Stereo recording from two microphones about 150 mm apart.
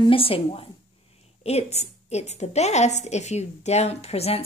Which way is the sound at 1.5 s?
45° left (ahead or behind).